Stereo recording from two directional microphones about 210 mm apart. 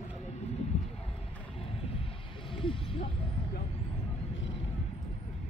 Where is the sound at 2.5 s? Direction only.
25° left (ahead or behind).